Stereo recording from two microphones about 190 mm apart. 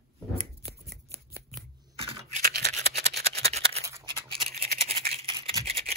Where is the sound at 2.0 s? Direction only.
30° right (ahead or behind).